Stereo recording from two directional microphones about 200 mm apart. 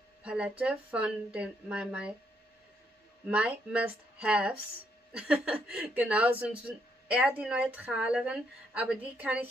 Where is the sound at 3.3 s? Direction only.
5° right (ahead or behind).